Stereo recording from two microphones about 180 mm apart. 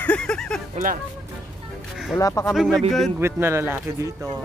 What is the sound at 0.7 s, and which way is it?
Speech, 50° right (ahead or behind).